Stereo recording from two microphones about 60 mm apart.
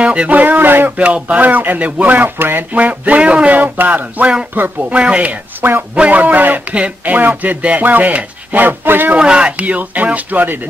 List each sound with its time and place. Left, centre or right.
0.0 s speech: centre
0.3 s speech: right
2.7 s speech: right
9.1 s speech: centre